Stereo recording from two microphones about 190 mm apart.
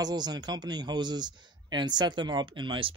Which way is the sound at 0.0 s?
20° right (ahead or behind).